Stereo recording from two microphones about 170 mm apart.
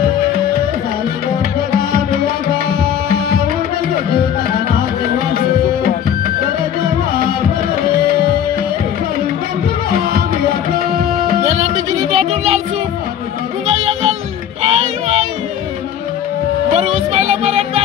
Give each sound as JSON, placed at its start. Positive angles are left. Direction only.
{"t": 1.7, "sound": "music", "side_deg": -60}
{"t": 10.7, "sound": "music", "side_deg": -60}
{"t": 11.4, "sound": "music", "side_deg": -40}
{"t": 14.6, "sound": "child singing", "side_deg": -40}
{"t": 16.7, "sound": "music", "side_deg": -40}